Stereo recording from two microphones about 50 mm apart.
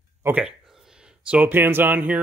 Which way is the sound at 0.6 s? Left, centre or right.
Centre.